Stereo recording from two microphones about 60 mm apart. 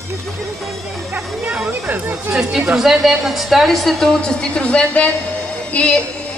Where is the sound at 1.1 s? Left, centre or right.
Centre.